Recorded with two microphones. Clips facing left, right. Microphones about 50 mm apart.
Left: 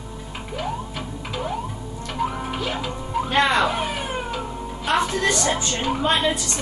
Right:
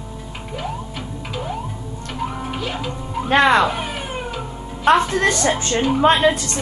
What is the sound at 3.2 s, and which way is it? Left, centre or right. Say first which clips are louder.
Speech: right 6 dB; right.